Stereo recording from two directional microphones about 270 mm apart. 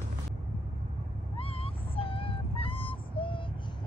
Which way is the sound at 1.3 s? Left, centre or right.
Left.